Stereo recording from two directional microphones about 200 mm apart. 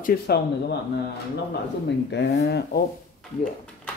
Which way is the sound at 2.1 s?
55° left (ahead or behind).